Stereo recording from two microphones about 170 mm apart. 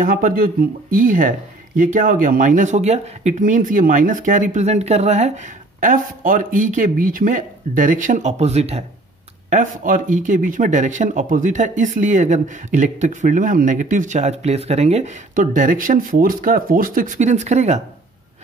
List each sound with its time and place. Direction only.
0.0 s speech: 55° right (ahead or behind); by 8.8 s 40° right (ahead or behind)
9.5 s speech: 50° right (ahead or behind)